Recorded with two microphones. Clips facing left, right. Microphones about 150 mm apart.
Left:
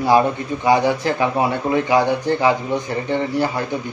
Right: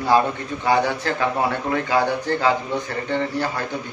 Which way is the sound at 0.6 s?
15° left (ahead or behind).